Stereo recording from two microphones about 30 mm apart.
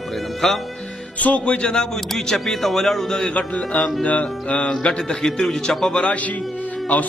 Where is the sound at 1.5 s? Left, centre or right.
Left.